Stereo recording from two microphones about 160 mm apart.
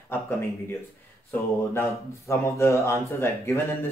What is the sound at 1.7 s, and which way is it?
Speech, 15° left (ahead or behind).